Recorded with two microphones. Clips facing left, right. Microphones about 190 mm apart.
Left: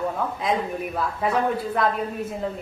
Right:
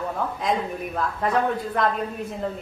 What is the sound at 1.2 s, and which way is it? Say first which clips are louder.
Speech: even; 5° left (ahead or behind).